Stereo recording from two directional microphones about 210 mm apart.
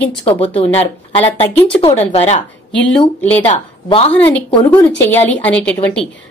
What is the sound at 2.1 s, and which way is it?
Speech, 30° left (ahead or behind).